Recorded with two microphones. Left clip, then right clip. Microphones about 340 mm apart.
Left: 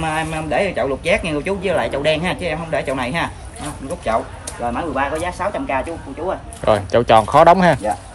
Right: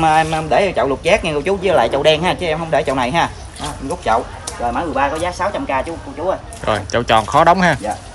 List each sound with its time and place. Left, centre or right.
0.0 s speech: centre
4.7 s speech: centre
6.6 s speech: centre